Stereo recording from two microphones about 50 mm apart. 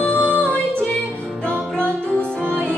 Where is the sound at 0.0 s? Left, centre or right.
Left.